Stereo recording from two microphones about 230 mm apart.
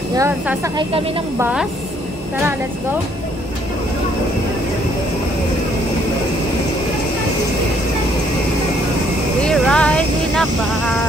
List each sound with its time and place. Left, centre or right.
0.1 s speech: centre
1.4 s a woman's voice: centre
9.4 s speech: centre